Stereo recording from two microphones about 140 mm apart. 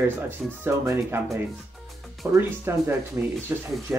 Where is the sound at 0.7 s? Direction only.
15° right (ahead or behind).